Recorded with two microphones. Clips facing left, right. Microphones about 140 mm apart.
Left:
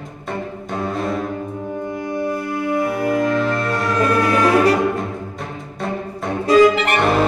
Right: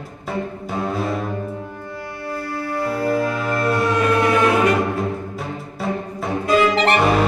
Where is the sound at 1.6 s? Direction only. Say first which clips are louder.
Left 7 dB; 20° left (ahead or behind).